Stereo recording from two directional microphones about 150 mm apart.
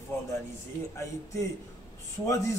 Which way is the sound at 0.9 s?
20° left (ahead or behind).